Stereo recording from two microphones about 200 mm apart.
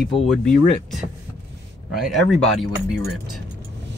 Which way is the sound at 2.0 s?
Centre (ahead or behind).